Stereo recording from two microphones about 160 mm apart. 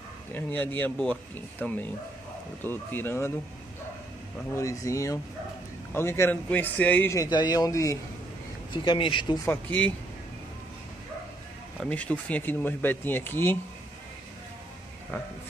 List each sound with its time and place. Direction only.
0.3 s a man's voice: 10° left (ahead or behind)
4.6 s a man's voice: 20° left (ahead or behind)
8.8 s speech: 30° left (ahead or behind)
9.5 s a man's voice: 10° left (ahead or behind)
11.9 s a man's voice: 10° left (ahead or behind)